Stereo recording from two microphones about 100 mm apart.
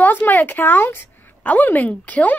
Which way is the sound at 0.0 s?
20° left (ahead or behind).